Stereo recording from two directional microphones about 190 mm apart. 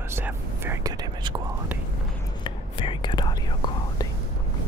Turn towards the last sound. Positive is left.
turn(degrees=20)  # may be behind; listen again after turning